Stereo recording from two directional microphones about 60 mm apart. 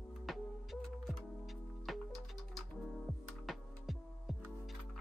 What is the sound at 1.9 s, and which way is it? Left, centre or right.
Music, centre.